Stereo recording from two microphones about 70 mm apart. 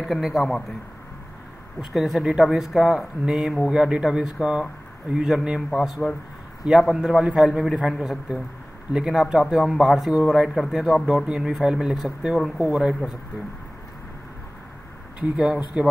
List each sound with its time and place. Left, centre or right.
0.0 s a man's voice: centre
1.8 s a man's voice: centre
15.1 s speech: centre